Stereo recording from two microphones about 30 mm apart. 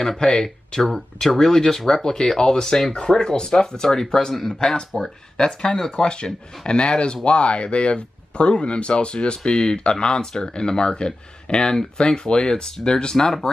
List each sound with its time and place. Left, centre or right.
0.2 s speech: centre